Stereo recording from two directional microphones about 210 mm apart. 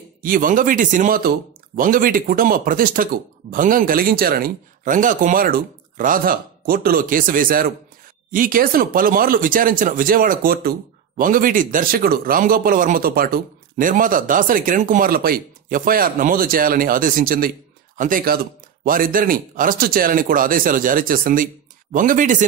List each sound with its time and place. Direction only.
0.2 s speech: 40° right (ahead or behind)